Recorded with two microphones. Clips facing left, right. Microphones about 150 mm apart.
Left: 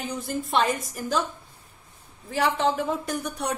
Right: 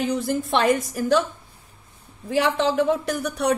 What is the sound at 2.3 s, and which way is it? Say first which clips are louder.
Speech: right 3 dB; 75° right (ahead or behind).